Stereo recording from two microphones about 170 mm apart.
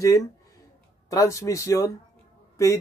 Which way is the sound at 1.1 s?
20° left (ahead or behind).